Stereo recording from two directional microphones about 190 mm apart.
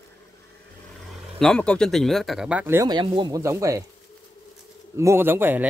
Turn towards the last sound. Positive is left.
turn(degrees=-10)  # may be behind; listen again after turning